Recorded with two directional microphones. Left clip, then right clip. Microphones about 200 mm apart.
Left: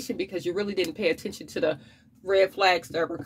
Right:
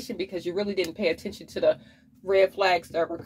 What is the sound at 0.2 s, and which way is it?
Speech, 30° left (ahead or behind).